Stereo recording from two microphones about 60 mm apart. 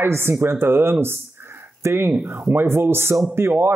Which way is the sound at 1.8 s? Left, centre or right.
Right.